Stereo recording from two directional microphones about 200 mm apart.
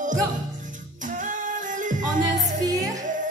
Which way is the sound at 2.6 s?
15° right (ahead or behind).